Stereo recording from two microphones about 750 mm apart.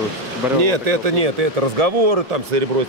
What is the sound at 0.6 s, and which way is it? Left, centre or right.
Speech, right.